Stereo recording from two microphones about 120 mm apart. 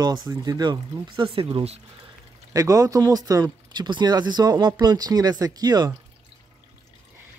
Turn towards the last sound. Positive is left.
turn(degrees=-35)  # may be behind; listen again after turning